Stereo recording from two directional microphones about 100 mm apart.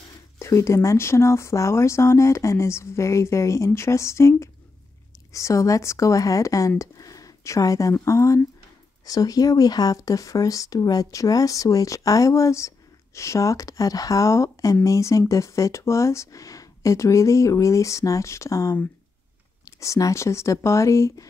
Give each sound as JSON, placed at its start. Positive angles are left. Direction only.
{"t": 0.4, "sound": "speech", "side_deg": 30}
{"t": 6.8, "sound": "a sound", "side_deg": 35}
{"t": 8.0, "sound": "speech", "side_deg": 30}
{"t": 19.8, "sound": "speech", "side_deg": 30}